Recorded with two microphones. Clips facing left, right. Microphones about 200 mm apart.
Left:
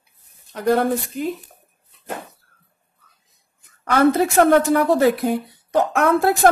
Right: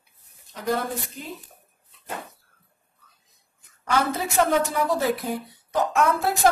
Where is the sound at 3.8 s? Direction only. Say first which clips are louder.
Left 9 dB; 65° left (ahead or behind).